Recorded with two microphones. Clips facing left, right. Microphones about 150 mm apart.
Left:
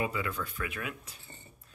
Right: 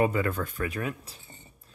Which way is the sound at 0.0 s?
50° right (ahead or behind).